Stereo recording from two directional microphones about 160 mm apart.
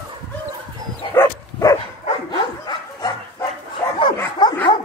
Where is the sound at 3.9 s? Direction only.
30° left (ahead or behind).